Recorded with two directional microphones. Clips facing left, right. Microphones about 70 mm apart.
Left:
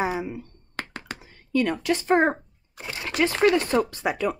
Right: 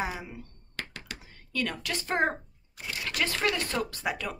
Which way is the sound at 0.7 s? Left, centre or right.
Left.